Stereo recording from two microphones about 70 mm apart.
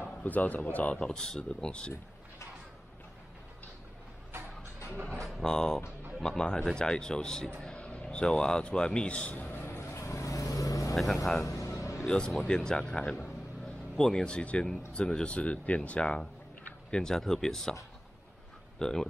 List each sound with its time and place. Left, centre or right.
0.0 s a sound: left
0.6 s speech: left
0.9 s speech: centre
5.2 s speech: centre
7.6 s a sound: centre; by 11.0 s left
11.4 s music: left
12.1 s speech: centre
18.8 s speech: centre